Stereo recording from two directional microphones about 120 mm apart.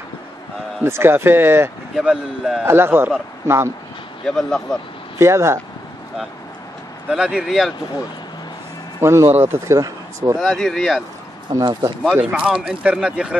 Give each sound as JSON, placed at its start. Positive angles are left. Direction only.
{"t": 0.8, "sound": "speech", "side_deg": -20}
{"t": 2.0, "sound": "speech", "side_deg": -5}
{"t": 2.6, "sound": "speech", "side_deg": -20}
{"t": 4.3, "sound": "speech", "side_deg": 5}
{"t": 5.2, "sound": "speech", "side_deg": -20}
{"t": 7.1, "sound": "speech", "side_deg": -5}
{"t": 9.0, "sound": "speech", "side_deg": -25}
{"t": 10.4, "sound": "speech", "side_deg": 5}
{"t": 11.5, "sound": "speech", "side_deg": -35}
{"t": 12.0, "sound": "speech", "side_deg": -5}